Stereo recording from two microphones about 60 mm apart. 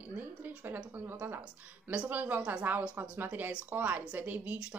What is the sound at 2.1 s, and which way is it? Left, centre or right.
A woman's voice, right.